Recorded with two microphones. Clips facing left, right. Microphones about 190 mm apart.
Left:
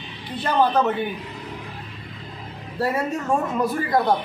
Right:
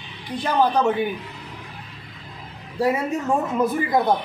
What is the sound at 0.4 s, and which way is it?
Speech, 10° right (ahead or behind).